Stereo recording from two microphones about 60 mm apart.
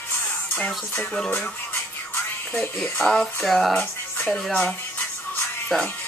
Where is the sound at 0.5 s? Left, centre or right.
Left.